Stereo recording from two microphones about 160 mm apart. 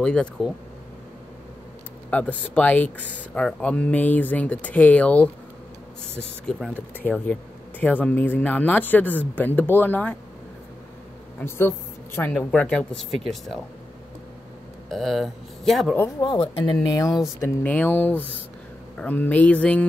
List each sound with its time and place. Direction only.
0.0 s speech: 5° left (ahead or behind)
2.0 s speech: 10° left (ahead or behind)
11.3 s speech: 15° left (ahead or behind)
14.9 s speech: centre (ahead or behind)
16.2 s speech: 30° left (ahead or behind)
17.6 s speech: 10° left (ahead or behind)